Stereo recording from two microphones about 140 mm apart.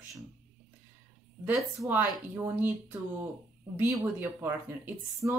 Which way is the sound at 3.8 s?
15° right (ahead or behind).